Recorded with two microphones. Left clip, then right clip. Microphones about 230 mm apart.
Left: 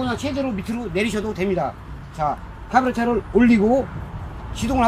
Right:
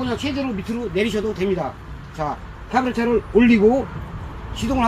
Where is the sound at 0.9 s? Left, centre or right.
Left.